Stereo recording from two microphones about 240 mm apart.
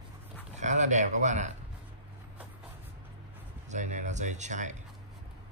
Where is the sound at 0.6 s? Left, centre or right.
Right.